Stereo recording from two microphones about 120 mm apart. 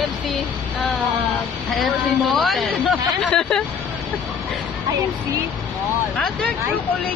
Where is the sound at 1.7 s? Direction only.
Centre (ahead or behind).